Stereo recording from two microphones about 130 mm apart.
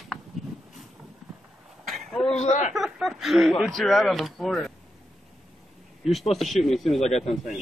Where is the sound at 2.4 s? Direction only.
65° left (ahead or behind).